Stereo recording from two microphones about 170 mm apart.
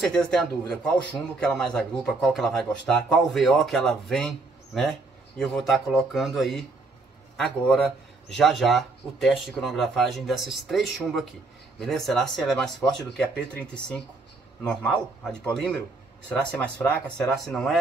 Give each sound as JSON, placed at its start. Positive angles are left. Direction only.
{"t": 0.0, "sound": "speech", "side_deg": 5}
{"t": 5.4, "sound": "speech", "side_deg": 0}
{"t": 14.6, "sound": "speech", "side_deg": 5}